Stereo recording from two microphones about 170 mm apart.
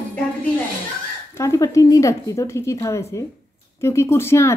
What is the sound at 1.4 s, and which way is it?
A woman's voice, 20° left (ahead or behind).